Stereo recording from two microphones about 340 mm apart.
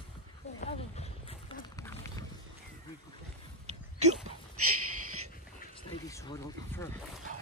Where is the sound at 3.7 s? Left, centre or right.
Centre.